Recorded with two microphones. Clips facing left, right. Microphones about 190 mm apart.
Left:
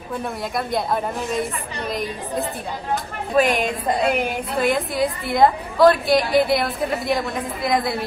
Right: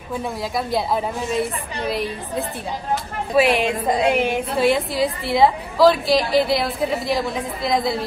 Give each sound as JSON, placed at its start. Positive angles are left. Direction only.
{"t": 0.2, "sound": "a woman's voice", "side_deg": 0}